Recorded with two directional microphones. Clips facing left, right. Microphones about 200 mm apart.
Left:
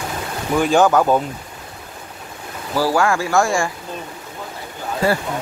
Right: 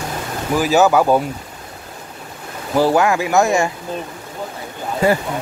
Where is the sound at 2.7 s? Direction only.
20° right (ahead or behind).